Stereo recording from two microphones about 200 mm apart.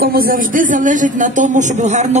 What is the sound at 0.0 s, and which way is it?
A man's voice, 50° right (ahead or behind).